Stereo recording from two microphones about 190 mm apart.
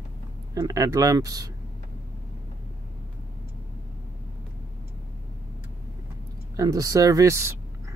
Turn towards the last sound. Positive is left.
turn(degrees=-15)  # may be behind; listen again after turning